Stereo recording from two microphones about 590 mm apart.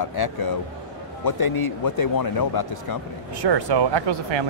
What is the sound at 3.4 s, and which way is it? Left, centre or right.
Speech, right.